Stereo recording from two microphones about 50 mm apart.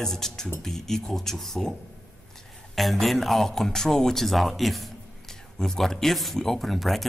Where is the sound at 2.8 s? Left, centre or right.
Centre.